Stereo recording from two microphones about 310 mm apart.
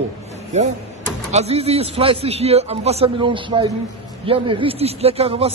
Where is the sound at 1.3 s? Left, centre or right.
Centre.